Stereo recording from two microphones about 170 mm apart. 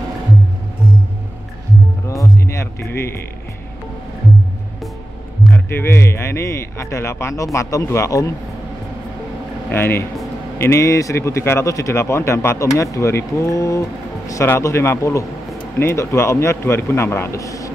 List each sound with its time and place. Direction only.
2.0 s music: 20° left (ahead or behind)
5.4 s speech: 10° left (ahead or behind)
9.7 s speech: 15° left (ahead or behind)